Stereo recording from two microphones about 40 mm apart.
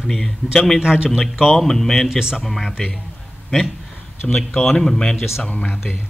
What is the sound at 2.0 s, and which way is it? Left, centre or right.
Speech, centre.